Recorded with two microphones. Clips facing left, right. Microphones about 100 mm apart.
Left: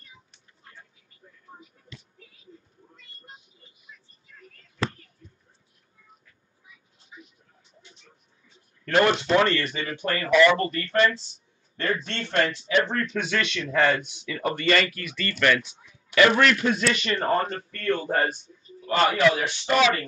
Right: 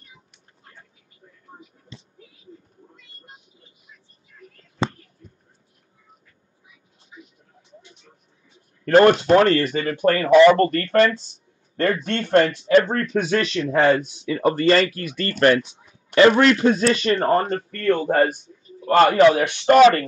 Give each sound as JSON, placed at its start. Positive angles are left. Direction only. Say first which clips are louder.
{"t": 4.8, "sound": "whispering", "louder": "right 4 dB", "side_deg": -25}
{"t": 8.8, "sound": "speech", "louder": "right 8 dB", "side_deg": -45}
{"t": 17.1, "sound": "speech", "louder": "right 5 dB", "side_deg": -45}